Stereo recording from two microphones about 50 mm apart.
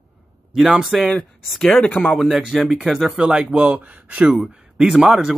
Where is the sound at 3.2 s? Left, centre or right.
Centre.